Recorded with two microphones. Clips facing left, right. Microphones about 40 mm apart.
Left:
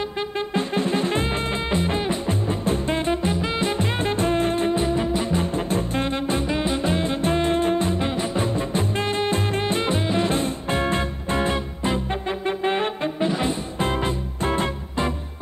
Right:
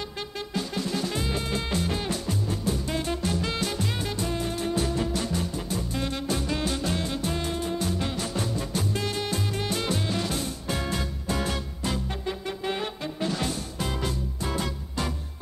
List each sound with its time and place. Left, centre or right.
0.4 s music: left
13.8 s music: left